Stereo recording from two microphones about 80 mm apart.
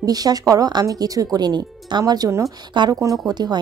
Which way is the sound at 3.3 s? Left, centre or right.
Right.